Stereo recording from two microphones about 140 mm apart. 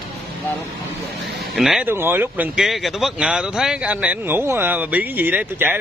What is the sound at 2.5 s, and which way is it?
Speech, centre (ahead or behind).